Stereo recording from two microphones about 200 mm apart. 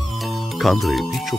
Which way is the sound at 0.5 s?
Centre (ahead or behind).